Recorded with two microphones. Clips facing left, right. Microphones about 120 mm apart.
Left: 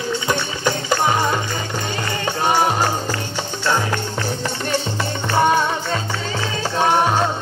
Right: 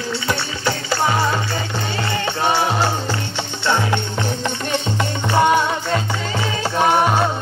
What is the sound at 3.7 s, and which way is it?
Music, 20° right (ahead or behind).